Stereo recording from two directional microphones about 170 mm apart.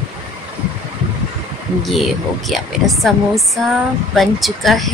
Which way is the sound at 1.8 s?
Centre (ahead or behind).